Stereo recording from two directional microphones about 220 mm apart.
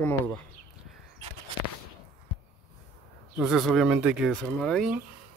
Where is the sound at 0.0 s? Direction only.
10° left (ahead or behind).